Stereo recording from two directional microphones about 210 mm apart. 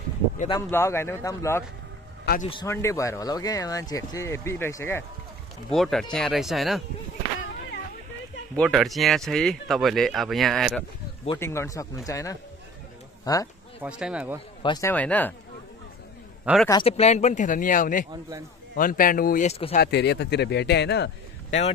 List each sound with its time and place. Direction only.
0.5 s speech: 15° left (ahead or behind)
2.3 s a man's voice: 50° left (ahead or behind)
2.6 s speech: 15° left (ahead or behind)
5.7 s speech: centre (ahead or behind)
8.5 s speech: centre (ahead or behind)
11.3 s speech: 10° left (ahead or behind)
13.8 s speech: 5° right (ahead or behind)
14.6 s speech: 15° left (ahead or behind)
16.5 s speech: 5° right (ahead or behind)
16.8 s a man's voice: 30° left (ahead or behind); by 21.5 s 55° left (ahead or behind)